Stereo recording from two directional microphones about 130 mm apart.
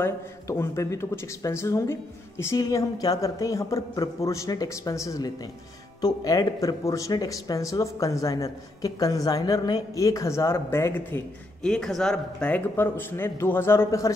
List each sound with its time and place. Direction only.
0.0 s speech: 20° left (ahead or behind)